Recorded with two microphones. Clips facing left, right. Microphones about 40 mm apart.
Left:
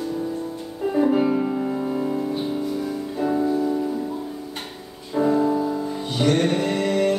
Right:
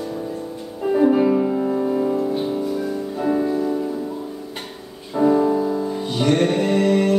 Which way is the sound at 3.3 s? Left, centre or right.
Centre.